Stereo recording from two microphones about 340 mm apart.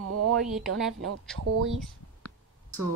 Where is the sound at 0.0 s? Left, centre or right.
Right.